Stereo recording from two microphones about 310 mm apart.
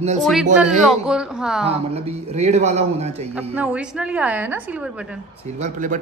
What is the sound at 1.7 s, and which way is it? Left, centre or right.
A man's voice, centre.